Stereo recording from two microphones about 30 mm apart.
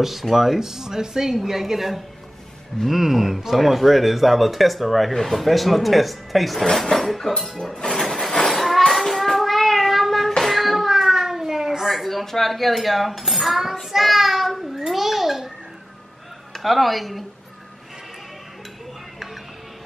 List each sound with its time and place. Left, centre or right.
0.0 s speech: centre
6.6 s speech: centre
7.5 s speech: centre
7.9 s child singing: centre
10.4 s a sound: centre
11.8 s speech: centre
13.7 s child singing: centre
14.9 s babbling: centre
16.5 s speech: centre